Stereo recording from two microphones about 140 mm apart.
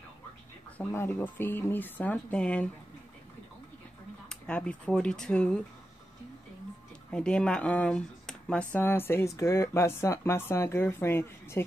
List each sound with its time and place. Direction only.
0.7 s speech: 15° left (ahead or behind)
4.3 s speech: 10° left (ahead or behind)
7.1 s speech: 5° left (ahead or behind)